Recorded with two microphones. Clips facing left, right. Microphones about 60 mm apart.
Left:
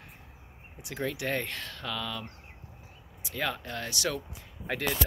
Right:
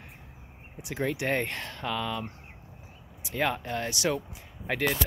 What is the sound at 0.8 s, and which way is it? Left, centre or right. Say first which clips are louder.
Speech: right 3 dB; right.